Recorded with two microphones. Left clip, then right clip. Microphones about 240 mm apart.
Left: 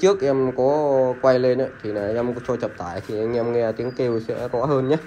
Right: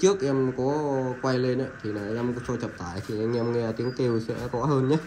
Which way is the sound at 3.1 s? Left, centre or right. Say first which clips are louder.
Left 6 dB; centre.